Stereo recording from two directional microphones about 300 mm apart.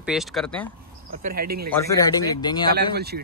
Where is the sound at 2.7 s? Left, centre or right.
Right.